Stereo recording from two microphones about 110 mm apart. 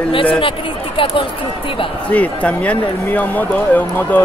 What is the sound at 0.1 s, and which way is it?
Speech, 55° left (ahead or behind).